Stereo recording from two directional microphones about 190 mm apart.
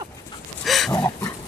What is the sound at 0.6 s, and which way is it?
Dog, centre (ahead or behind).